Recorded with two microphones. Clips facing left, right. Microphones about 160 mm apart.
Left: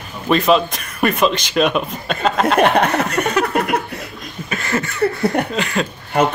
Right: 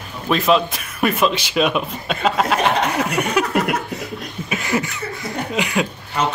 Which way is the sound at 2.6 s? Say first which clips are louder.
Left 7 dB; 60° left (ahead or behind).